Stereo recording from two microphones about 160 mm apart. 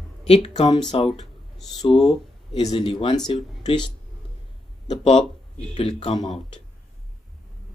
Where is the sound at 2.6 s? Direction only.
30° left (ahead or behind).